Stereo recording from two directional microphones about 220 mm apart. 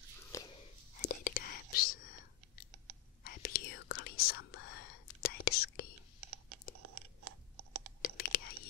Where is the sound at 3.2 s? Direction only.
40° left (ahead or behind).